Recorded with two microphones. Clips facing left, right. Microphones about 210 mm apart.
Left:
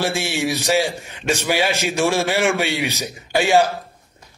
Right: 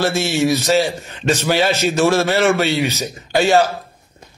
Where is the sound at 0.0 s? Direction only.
15° left (ahead or behind).